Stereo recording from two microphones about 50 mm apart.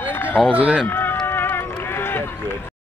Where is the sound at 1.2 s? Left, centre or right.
Left.